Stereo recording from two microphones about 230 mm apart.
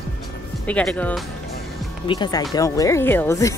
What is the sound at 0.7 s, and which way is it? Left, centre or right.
Speech, centre.